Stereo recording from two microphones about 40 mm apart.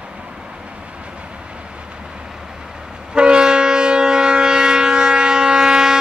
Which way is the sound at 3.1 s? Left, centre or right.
Right.